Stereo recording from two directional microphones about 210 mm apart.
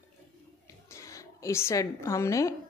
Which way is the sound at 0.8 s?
15° left (ahead or behind).